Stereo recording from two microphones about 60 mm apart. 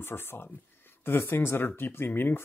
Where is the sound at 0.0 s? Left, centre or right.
Left.